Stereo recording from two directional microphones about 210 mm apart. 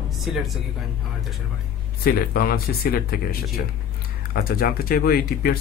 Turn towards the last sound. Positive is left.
turn(degrees=45)  # may be behind; listen again after turning